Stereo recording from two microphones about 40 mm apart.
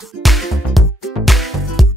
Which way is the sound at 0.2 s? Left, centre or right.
Centre.